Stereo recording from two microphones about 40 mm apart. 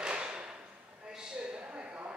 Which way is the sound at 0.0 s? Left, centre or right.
Right.